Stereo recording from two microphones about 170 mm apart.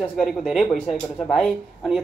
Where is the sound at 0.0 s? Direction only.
Centre (ahead or behind).